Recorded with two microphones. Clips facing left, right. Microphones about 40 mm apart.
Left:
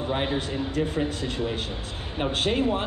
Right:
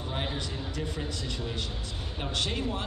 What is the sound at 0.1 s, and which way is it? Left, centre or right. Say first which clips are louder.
Speech: left 7 dB; left.